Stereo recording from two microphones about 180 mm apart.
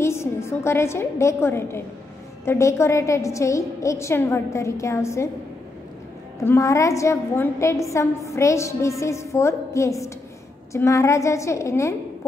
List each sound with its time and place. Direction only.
0.0 s a woman's voice: 15° left (ahead or behind)
6.4 s a woman's voice: 15° left (ahead or behind)